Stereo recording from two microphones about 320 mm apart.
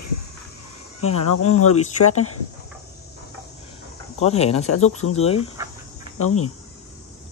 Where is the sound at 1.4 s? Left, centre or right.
Left.